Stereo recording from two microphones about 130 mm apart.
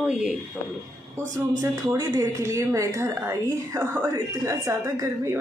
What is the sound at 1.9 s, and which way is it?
Speech, 20° right (ahead or behind).